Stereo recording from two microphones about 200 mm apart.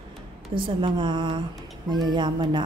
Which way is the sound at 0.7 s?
25° right (ahead or behind).